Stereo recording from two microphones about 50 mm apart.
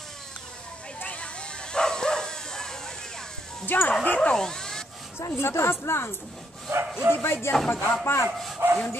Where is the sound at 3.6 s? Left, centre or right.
Left.